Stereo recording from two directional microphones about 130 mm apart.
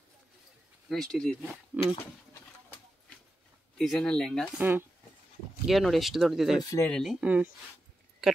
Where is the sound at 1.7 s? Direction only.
10° right (ahead or behind).